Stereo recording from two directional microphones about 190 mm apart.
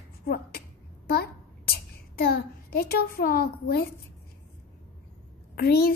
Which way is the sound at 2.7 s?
50° left (ahead or behind).